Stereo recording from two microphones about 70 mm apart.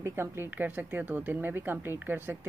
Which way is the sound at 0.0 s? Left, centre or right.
Right.